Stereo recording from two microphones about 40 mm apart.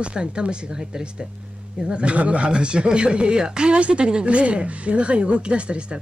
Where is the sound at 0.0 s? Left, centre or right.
Right.